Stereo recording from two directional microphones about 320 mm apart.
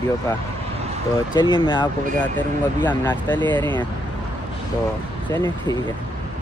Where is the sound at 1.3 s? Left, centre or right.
Centre.